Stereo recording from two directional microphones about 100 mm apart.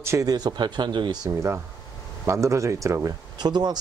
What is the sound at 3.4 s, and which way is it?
Speech, 45° right (ahead or behind).